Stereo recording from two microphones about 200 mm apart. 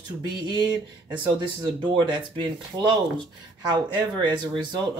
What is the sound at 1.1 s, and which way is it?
Speech, 20° right (ahead or behind).